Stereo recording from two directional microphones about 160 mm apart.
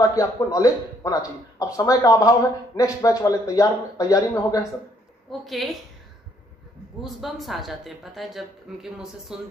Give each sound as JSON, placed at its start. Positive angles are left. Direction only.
{"t": 0.1, "sound": "speech", "side_deg": 20}
{"t": 5.4, "sound": "speech", "side_deg": 0}
{"t": 7.0, "sound": "speech", "side_deg": 0}